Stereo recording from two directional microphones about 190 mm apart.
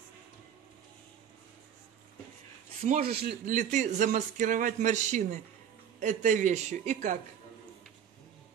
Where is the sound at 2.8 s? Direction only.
50° right (ahead or behind).